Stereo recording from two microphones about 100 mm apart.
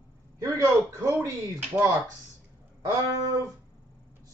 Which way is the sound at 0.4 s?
35° right (ahead or behind).